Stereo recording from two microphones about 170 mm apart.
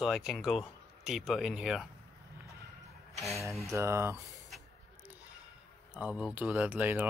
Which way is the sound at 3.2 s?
Centre (ahead or behind).